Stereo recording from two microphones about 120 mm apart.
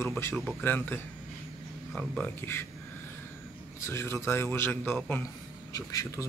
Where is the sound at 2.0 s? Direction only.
15° left (ahead or behind).